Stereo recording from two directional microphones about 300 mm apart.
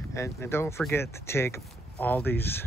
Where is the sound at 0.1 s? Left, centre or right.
Centre.